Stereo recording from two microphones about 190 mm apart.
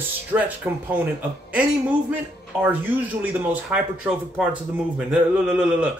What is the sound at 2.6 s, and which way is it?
Speech, 10° right (ahead or behind).